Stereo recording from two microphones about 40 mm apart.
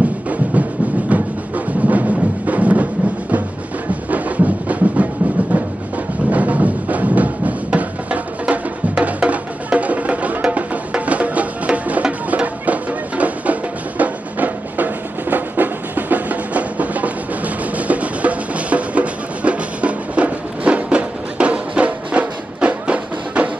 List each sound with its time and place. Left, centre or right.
0.3 s music: right